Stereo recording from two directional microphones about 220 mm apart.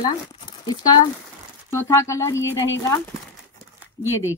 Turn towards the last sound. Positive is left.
turn(degrees=10)  # may be behind; listen again after turning